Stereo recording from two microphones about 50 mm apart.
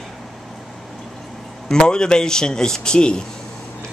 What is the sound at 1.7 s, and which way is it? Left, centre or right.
Speech, centre.